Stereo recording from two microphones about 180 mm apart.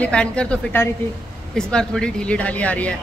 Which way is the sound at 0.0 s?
5° left (ahead or behind).